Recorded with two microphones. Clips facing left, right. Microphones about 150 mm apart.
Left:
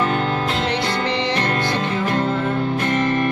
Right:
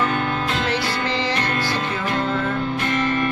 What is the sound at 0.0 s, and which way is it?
Music, 30° left (ahead or behind).